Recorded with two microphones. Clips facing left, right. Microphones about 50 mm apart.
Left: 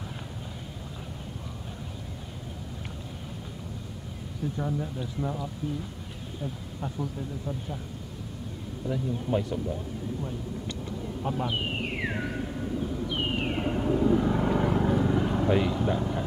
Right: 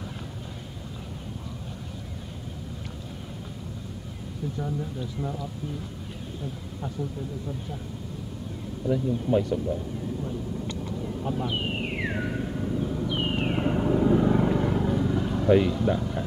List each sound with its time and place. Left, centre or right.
4.6 s speech: centre
8.8 s speech: centre
11.2 s a sound: centre
13.7 s vehicle: centre
14.1 s vehicle: centre
14.5 s vehicle: centre
15.4 s speech: centre